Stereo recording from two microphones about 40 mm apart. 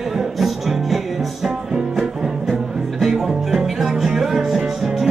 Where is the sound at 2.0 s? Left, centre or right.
Centre.